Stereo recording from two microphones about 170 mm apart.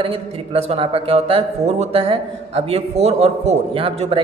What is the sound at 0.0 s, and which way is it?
A man's voice, 35° right (ahead or behind).